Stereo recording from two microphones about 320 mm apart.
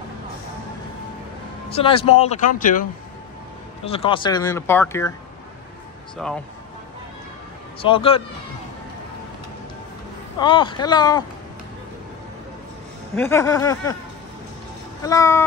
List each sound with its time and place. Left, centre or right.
1.7 s speech: centre
6.2 s speech: centre
7.8 s speech: centre
10.4 s speech: centre
13.1 s speech: centre
15.0 s speech: centre